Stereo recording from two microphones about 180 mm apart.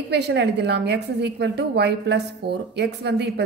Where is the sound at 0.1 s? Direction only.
70° right (ahead or behind).